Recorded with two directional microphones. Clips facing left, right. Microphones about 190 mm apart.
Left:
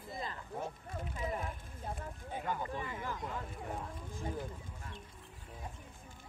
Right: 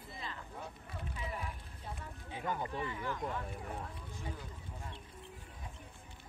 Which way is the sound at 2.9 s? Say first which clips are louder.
Right 1 dB; 45° left (ahead or behind).